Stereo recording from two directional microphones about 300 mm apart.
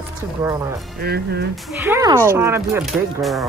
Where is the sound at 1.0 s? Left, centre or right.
Right.